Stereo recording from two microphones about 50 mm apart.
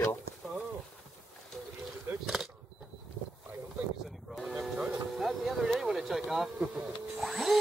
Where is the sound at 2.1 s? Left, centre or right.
Right.